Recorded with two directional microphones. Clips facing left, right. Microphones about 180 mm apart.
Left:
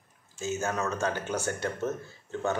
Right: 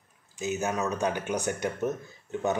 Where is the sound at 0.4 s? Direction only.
15° right (ahead or behind).